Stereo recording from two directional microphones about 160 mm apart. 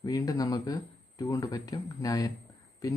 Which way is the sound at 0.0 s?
25° left (ahead or behind).